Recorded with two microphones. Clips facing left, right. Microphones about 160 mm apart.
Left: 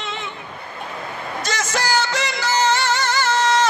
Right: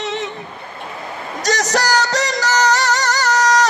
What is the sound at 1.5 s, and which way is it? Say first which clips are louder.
Music: right 5 dB; 40° right (ahead or behind).